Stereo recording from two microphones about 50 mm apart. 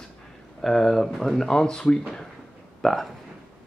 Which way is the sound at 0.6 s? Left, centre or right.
Centre.